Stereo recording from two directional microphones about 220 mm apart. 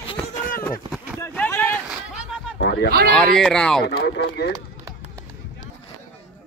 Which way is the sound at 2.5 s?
50° left (ahead or behind).